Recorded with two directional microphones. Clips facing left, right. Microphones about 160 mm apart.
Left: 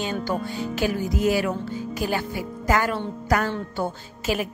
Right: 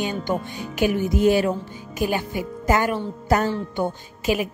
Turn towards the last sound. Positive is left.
turn(degrees=-15)  # may be behind; listen again after turning